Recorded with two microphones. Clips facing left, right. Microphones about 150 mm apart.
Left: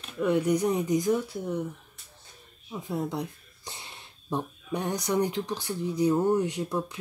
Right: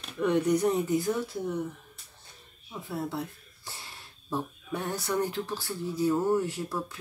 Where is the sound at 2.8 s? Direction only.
15° left (ahead or behind).